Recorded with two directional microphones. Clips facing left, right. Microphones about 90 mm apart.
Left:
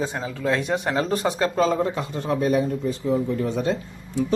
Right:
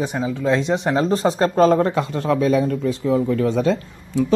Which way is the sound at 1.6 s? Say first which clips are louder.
Right 7 dB; 60° right (ahead or behind).